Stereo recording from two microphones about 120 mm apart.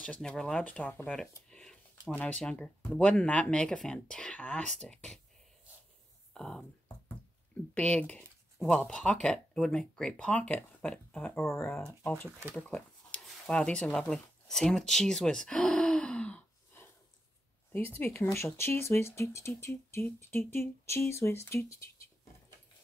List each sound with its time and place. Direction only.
0.0 s speech: 10° left (ahead or behind)
6.3 s speech: 5° left (ahead or behind)
7.7 s speech: 10° left (ahead or behind)
12.5 s a sound: 10° left (ahead or behind)
17.7 s speech: 15° left (ahead or behind)